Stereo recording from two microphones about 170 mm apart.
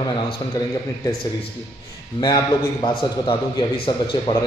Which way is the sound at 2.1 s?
25° left (ahead or behind).